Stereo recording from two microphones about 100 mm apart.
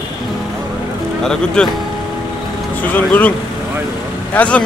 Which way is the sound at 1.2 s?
5° left (ahead or behind).